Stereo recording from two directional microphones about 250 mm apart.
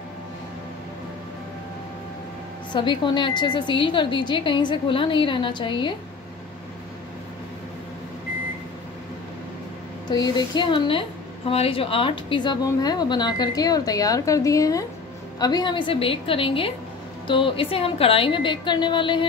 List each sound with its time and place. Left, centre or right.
2.7 s a woman's voice: centre
10.0 s a woman's voice: centre